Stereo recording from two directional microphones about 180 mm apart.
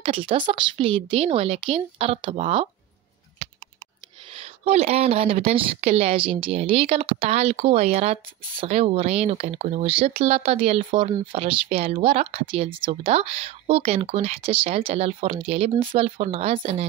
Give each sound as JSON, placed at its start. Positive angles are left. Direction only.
{"t": 0.0, "sound": "a woman's voice", "side_deg": -30}
{"t": 4.3, "sound": "a woman's voice", "side_deg": -35}